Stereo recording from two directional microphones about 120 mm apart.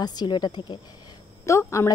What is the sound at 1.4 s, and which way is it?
Speech, 25° left (ahead or behind).